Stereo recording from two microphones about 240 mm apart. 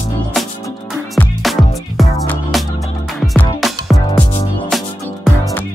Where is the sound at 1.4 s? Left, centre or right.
Centre.